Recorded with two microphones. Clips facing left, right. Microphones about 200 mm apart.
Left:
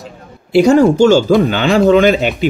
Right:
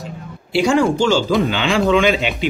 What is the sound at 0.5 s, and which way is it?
Speech, 40° left (ahead or behind).